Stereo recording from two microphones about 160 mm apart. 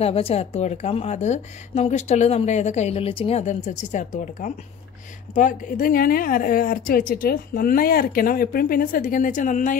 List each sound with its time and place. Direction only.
0.0 s a woman's voice: 40° left (ahead or behind); by 9.8 s 55° left (ahead or behind)